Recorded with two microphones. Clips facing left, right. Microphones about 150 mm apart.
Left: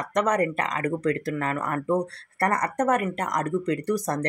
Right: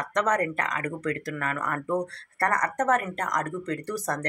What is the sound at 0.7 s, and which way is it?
Speech, 30° left (ahead or behind).